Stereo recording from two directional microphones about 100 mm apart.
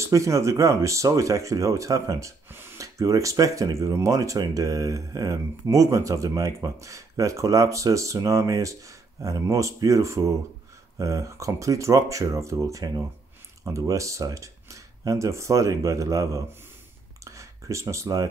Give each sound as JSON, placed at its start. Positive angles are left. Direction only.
{"t": 0.0, "sound": "speech", "side_deg": -30}
{"t": 2.8, "sound": "speech", "side_deg": -35}
{"t": 17.2, "sound": "a sound", "side_deg": -30}